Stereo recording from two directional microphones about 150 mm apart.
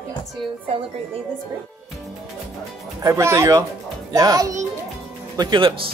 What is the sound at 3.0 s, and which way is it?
A child's voice, 20° right (ahead or behind).